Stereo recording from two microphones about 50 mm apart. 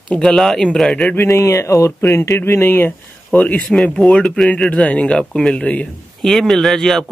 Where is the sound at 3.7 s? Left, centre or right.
Centre.